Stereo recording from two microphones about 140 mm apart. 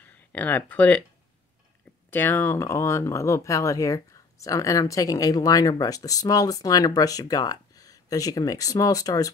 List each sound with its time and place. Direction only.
0.0 s speech: 10° left (ahead or behind)
2.0 s speech: 15° left (ahead or behind)